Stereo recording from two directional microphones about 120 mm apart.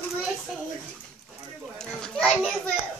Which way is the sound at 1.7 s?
5° left (ahead or behind).